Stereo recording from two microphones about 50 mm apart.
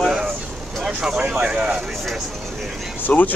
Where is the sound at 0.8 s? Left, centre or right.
Centre.